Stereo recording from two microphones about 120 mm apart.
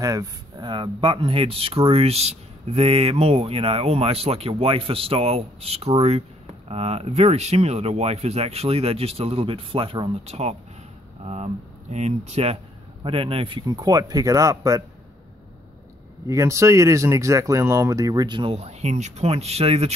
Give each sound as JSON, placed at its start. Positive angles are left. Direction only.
{"t": 0.0, "sound": "speech", "side_deg": -30}
{"t": 10.2, "sound": "speech", "side_deg": -65}
{"t": 13.0, "sound": "speech", "side_deg": -50}
{"t": 16.3, "sound": "speech", "side_deg": -25}
{"t": 18.6, "sound": "speech", "side_deg": -65}